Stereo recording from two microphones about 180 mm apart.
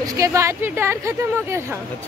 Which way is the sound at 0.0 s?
20° right (ahead or behind).